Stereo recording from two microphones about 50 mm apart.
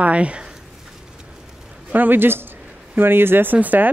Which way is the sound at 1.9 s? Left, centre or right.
Right.